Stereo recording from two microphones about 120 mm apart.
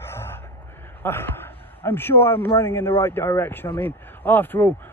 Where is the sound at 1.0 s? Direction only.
20° left (ahead or behind).